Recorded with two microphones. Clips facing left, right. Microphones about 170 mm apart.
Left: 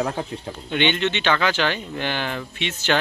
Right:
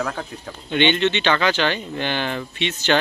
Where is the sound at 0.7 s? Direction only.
5° left (ahead or behind).